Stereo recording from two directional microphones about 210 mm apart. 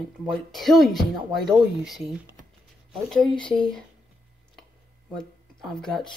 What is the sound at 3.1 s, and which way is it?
Speech, 5° left (ahead or behind).